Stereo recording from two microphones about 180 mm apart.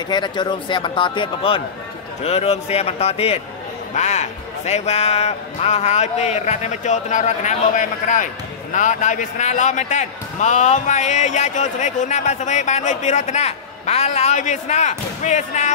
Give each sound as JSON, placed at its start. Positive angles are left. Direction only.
{"t": 0.1, "sound": "speech", "side_deg": 25}